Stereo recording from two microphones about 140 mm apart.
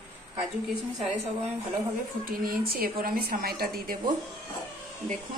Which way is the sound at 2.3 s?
90° right.